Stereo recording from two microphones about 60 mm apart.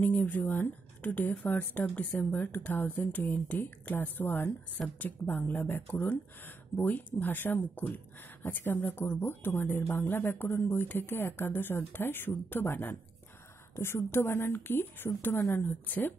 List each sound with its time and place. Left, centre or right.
0.0 s a woman's voice: left